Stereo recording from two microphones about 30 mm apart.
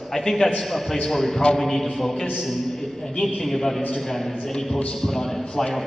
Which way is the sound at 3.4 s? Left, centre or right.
Centre.